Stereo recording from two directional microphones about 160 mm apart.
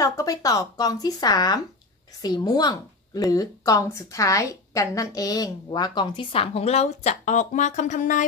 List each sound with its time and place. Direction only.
0.0 s a woman's voice: 20° left (ahead or behind); by 8.2 s 50° left (ahead or behind)